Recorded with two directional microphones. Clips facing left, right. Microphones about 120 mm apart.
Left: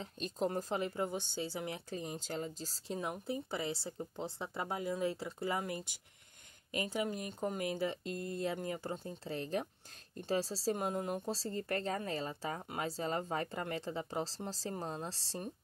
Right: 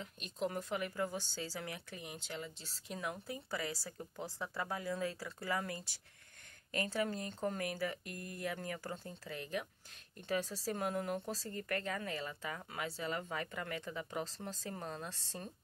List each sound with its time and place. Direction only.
0.0 s speech: 35° left (ahead or behind)
1.9 s speech: 35° left (ahead or behind)